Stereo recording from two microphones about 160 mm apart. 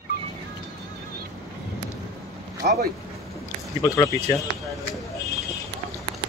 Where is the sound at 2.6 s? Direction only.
65° right (ahead or behind).